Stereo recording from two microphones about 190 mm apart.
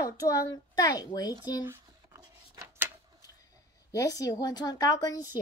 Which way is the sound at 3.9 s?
20° left (ahead or behind).